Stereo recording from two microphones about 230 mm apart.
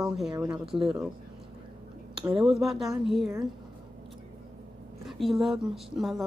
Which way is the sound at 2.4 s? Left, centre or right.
Centre.